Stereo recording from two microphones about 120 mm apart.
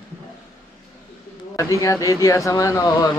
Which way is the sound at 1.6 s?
25° left (ahead or behind).